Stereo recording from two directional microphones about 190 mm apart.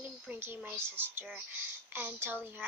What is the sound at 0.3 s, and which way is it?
A child's voice, 10° right (ahead or behind).